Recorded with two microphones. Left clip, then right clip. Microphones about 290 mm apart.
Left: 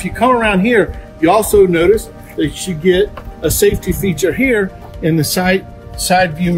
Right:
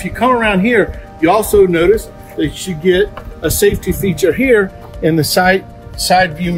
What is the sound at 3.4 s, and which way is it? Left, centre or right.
Speech, right.